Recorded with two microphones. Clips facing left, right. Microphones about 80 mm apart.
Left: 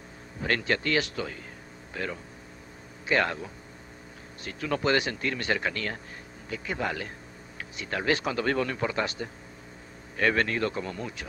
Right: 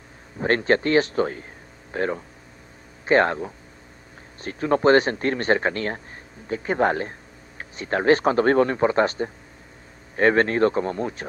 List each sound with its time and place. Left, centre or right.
0.4 s speech: right